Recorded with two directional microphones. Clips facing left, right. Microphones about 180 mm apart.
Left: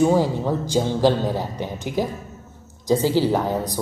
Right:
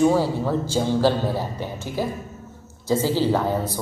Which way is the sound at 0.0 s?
15° left (ahead or behind).